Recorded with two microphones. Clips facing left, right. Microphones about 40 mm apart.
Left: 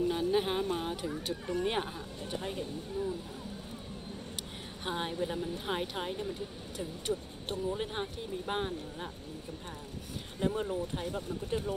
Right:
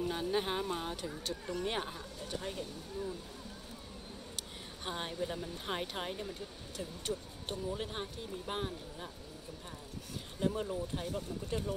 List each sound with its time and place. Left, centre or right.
0.1 s speech: centre
4.4 s speech: centre
10.4 s speech: left